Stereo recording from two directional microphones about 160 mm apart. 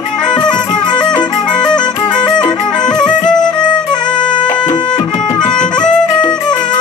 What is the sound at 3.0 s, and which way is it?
Music, 5° left (ahead or behind).